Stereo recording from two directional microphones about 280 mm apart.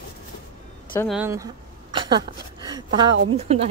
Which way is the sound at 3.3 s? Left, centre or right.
Right.